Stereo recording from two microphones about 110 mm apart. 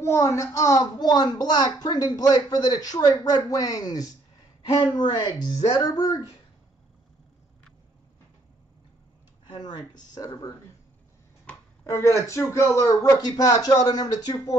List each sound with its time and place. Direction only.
0.0 s a woman's voice: 25° left (ahead or behind)
9.5 s a woman's voice: 40° left (ahead or behind)
11.8 s a woman's voice: 25° left (ahead or behind)